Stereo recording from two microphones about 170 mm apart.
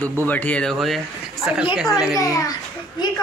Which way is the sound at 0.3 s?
10° left (ahead or behind).